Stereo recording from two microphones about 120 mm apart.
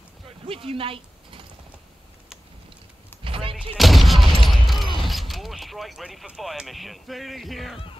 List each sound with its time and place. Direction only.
0.5 s speech: 50° right (ahead or behind)
3.3 s vehicle: 50° right (ahead or behind)
3.7 s gunshot: centre (ahead or behind)
4.5 s speech: centre (ahead or behind)